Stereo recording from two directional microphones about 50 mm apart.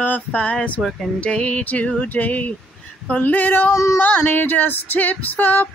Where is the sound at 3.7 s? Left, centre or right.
Left.